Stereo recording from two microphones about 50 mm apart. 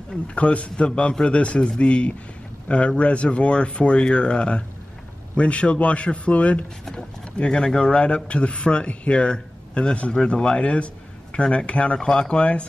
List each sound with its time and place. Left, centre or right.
0.3 s speech: left